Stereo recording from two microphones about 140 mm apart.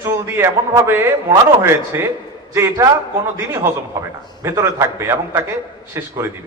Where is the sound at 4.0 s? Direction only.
20° right (ahead or behind).